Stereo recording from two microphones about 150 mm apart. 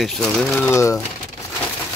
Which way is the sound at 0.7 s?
20° left (ahead or behind).